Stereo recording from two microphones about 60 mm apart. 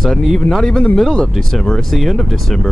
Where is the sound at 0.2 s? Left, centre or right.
Centre.